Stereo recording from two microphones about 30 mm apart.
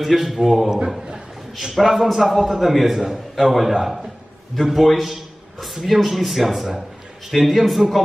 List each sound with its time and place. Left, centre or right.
0.0 s a man's voice: centre
1.0 s a sound: right
1.8 s a man's voice: centre
3.0 s a man's voice: centre
3.4 s a man's voice: centre